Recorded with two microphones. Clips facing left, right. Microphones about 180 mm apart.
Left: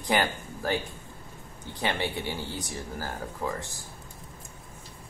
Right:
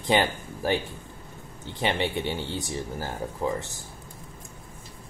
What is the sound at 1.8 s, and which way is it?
Speech, 20° right (ahead or behind).